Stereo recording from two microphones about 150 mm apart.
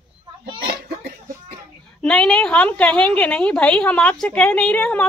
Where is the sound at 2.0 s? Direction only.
5° left (ahead or behind).